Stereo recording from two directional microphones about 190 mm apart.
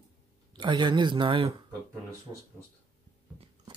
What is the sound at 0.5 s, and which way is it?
Speech, 25° right (ahead or behind).